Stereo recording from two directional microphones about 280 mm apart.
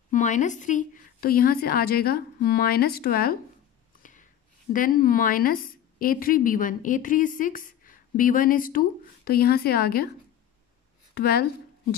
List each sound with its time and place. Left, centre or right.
0.1 s a woman's voice: left
4.0 s whispering: left
4.7 s a woman's voice: left
11.1 s a woman's voice: left